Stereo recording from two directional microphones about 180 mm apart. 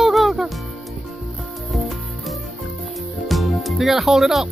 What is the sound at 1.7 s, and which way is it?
Music, centre (ahead or behind).